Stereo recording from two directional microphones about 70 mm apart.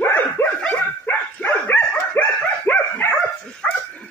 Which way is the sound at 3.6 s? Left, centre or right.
Centre.